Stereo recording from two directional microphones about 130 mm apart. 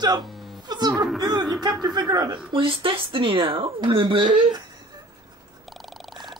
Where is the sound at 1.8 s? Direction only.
30° right (ahead or behind).